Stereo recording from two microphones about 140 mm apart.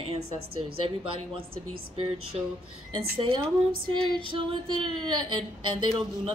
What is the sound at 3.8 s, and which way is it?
Speech, 35° right (ahead or behind).